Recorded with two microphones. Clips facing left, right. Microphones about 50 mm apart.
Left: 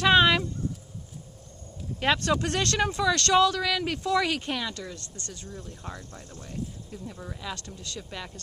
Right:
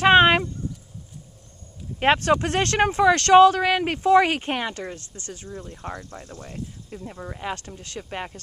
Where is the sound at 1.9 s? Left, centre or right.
Right.